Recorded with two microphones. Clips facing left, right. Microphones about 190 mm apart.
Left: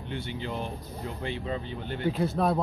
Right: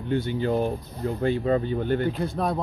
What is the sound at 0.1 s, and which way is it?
Speech, 45° right (ahead or behind).